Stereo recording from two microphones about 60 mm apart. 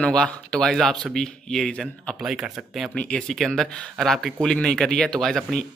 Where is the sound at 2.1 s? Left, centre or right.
Centre.